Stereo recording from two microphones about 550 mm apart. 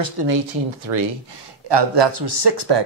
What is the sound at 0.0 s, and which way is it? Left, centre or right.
Speech, right.